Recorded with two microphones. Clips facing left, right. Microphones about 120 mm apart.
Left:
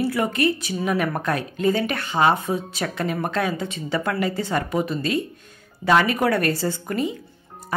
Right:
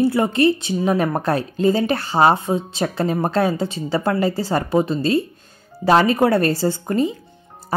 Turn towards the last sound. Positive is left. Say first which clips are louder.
# right 5 dB
turn(degrees=-30)  # may be behind; listen again after turning